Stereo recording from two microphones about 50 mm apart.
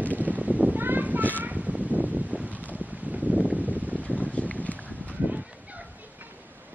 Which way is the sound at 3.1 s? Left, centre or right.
Right.